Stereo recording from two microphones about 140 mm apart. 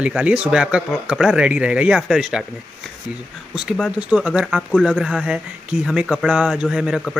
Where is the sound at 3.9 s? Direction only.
10° right (ahead or behind).